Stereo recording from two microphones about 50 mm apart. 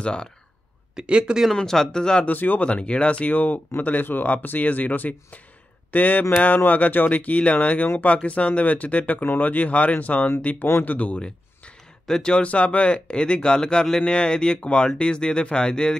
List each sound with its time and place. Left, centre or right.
0.0 s speech: centre
0.9 s speech: centre
1.5 s speech: centre
2.2 s speech: left
2.6 s speech: left